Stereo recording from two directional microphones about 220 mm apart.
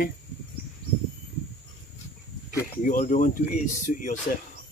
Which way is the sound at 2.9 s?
35° left (ahead or behind).